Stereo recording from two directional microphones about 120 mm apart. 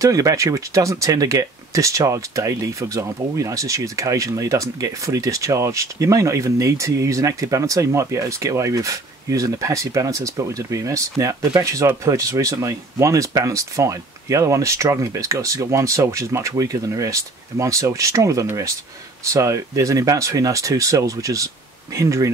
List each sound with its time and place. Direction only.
0.0 s speech: 25° right (ahead or behind)